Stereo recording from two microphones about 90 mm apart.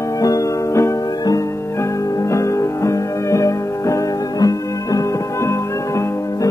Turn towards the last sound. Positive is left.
turn(degrees=40)  # may be behind; listen again after turning